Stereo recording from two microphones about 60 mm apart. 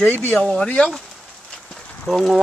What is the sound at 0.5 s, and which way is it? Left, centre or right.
Speech, centre.